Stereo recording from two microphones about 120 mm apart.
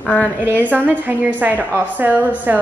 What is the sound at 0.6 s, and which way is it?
A woman's voice, 15° right (ahead or behind).